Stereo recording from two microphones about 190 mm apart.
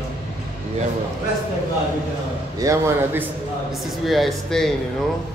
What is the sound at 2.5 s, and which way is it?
Speech, 15° right (ahead or behind).